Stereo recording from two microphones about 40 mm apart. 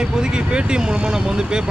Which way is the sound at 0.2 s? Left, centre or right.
Right.